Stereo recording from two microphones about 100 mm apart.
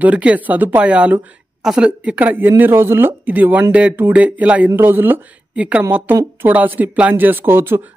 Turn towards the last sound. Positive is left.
turn(degrees=-25)  # may be behind; listen again after turning